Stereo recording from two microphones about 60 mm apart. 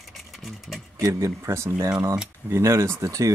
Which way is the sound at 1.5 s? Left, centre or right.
Right.